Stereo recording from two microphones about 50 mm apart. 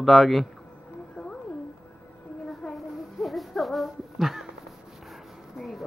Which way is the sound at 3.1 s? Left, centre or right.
Centre.